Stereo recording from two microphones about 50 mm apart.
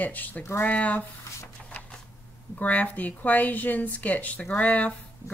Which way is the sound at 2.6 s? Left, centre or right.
Left.